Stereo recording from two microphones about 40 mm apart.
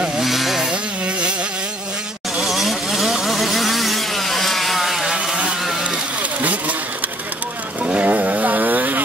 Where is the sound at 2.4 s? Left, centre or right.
Centre.